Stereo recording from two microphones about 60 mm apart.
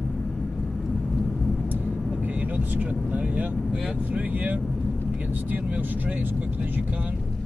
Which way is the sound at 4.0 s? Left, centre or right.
Right.